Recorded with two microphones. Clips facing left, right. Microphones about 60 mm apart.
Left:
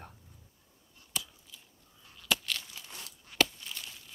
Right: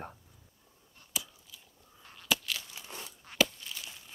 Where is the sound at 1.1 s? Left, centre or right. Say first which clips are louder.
Even; centre.